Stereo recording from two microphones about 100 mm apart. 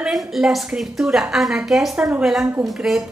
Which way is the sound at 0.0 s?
5° right (ahead or behind).